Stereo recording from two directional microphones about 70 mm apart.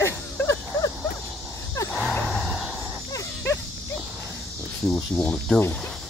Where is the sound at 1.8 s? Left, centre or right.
Left.